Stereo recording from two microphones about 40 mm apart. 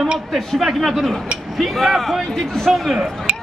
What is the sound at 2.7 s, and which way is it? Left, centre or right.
Speech, centre.